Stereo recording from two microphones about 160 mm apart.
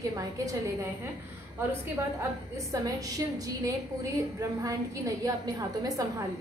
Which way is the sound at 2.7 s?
20° right (ahead or behind).